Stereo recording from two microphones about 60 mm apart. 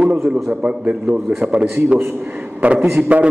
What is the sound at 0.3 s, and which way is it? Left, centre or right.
A man's voice, right.